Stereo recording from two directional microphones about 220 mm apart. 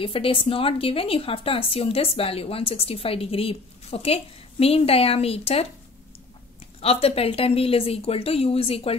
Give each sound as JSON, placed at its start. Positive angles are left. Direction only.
{"t": 0.0, "sound": "a woman's voice", "side_deg": 25}
{"t": 6.8, "sound": "a woman's voice", "side_deg": 25}